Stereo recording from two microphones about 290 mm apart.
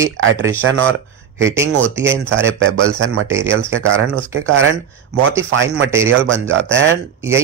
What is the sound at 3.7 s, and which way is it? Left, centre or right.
Speech, right.